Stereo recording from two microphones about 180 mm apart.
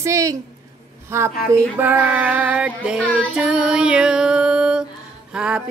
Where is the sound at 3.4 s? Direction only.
5° right (ahead or behind).